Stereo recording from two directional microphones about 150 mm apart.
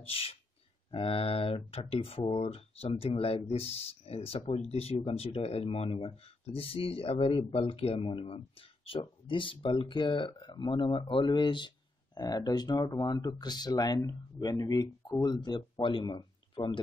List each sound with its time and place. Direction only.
0.0 s speech: 40° left (ahead or behind)